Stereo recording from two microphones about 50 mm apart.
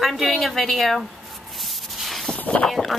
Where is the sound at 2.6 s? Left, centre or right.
Centre.